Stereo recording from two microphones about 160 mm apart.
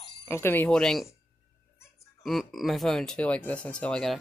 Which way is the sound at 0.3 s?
15° left (ahead or behind).